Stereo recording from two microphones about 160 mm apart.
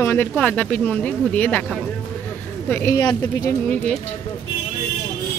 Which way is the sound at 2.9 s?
25° left (ahead or behind).